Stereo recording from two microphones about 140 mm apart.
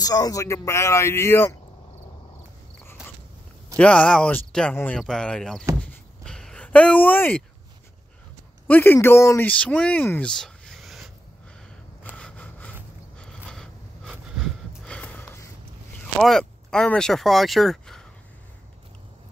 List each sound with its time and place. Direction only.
0.0 s speech: 25° left (ahead or behind)
3.7 s speech: 10° left (ahead or behind)
5.8 s a sound: 5° left (ahead or behind)
8.6 s speech: 15° left (ahead or behind)
9.5 s speech: 10° left (ahead or behind)
12.2 s a sound: 5° left (ahead or behind)
14.9 s sniff: 5° left (ahead or behind)
16.2 s speech: 5° left (ahead or behind)